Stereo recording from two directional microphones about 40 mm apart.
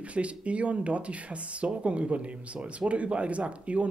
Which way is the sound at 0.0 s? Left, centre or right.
Right.